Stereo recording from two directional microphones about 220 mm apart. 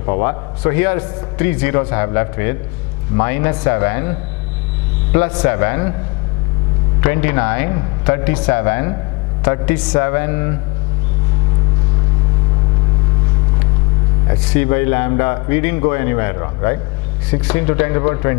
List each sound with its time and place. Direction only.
0.0 s a man's voice: 15° left (ahead or behind)
7.0 s a man's voice: 15° left (ahead or behind)
14.2 s a man's voice: 15° left (ahead or behind)